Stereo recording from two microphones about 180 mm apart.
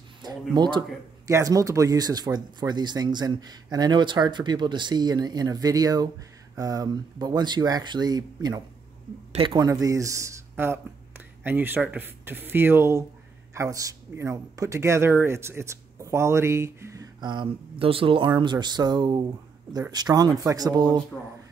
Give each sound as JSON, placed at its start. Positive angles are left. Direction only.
{"t": 0.2, "sound": "speech", "side_deg": -25}